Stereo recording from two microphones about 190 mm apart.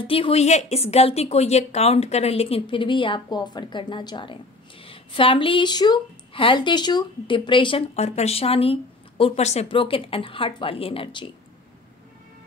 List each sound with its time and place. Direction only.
0.0 s speech: 30° left (ahead or behind)